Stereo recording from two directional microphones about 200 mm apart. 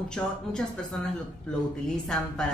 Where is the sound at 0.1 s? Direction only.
5° left (ahead or behind).